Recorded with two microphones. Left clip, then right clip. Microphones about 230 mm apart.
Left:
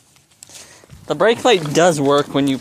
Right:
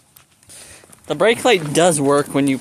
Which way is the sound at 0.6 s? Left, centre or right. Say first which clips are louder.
Left 1 dB; centre.